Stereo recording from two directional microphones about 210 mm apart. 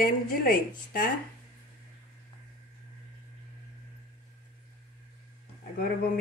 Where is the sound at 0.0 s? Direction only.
45° left (ahead or behind).